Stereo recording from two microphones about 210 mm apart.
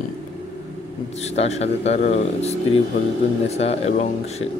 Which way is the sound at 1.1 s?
30° left (ahead or behind).